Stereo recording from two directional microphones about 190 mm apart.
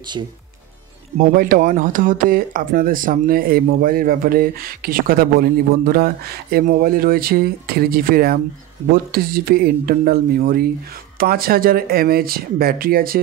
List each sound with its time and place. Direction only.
1.1 s speech: 45° right (ahead or behind)